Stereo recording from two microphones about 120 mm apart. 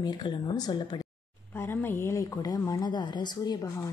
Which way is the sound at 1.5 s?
20° left (ahead or behind).